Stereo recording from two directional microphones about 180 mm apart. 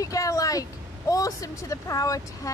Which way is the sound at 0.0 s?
20° left (ahead or behind).